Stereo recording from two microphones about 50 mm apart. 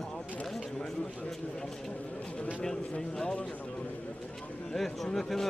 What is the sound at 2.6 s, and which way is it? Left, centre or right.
Speech, centre.